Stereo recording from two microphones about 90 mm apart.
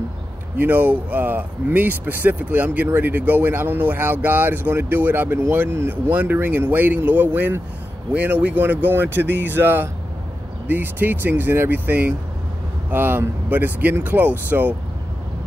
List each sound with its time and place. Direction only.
0.6 s speech: 20° right (ahead or behind)